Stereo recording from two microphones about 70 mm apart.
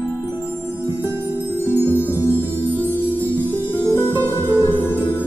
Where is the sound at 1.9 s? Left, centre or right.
Left.